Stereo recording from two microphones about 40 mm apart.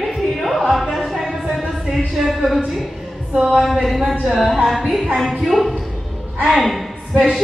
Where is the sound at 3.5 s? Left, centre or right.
Centre.